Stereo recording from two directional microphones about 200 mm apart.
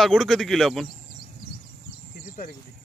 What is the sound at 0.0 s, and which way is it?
Speech, centre (ahead or behind).